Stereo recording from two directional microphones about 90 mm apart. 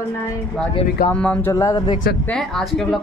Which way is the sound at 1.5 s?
40° left (ahead or behind).